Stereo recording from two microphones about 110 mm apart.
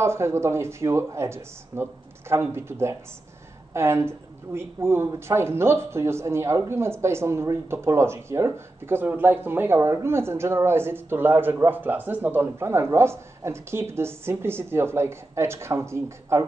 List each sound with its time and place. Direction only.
0.0 s speech: 25° right (ahead or behind)